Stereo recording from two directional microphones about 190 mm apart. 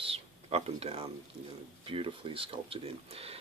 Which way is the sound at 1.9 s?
30° right (ahead or behind).